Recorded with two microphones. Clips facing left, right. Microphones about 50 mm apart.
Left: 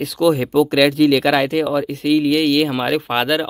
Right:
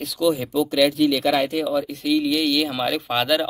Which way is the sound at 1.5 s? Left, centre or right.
Left.